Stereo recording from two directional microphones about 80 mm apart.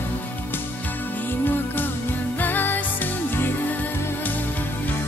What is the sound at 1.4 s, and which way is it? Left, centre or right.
Music, left.